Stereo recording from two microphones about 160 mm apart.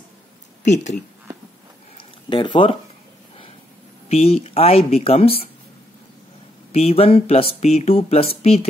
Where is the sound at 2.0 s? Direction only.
30° left (ahead or behind).